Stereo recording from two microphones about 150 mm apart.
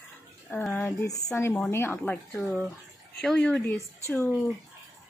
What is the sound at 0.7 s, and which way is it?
Speech, 20° left (ahead or behind).